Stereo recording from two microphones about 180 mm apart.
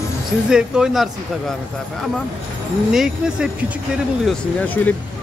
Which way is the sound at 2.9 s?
5° right (ahead or behind).